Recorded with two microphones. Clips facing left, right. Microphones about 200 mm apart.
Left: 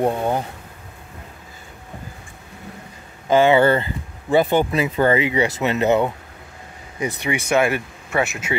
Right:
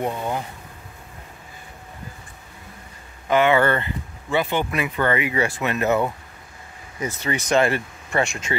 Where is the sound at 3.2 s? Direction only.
30° left (ahead or behind).